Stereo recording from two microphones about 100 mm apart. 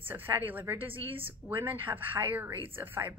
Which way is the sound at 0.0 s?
20° right (ahead or behind).